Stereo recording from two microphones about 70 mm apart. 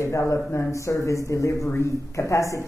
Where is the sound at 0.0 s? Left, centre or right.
Left.